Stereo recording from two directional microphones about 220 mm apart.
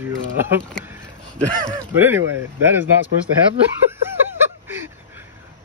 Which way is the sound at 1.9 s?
10° right (ahead or behind).